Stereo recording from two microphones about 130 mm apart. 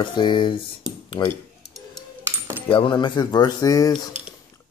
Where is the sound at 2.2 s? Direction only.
15° right (ahead or behind).